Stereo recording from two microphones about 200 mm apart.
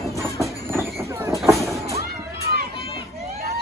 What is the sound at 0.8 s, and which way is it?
Vehicle, 15° right (ahead or behind).